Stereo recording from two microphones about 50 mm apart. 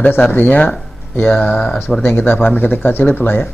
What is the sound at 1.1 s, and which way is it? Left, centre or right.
Speech, left.